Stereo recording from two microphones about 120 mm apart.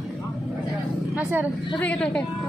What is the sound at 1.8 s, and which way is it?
Speech, 10° left (ahead or behind).